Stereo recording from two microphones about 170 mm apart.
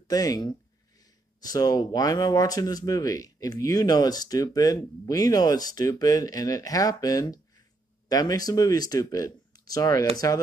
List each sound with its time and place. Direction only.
0.1 s speech: 20° left (ahead or behind)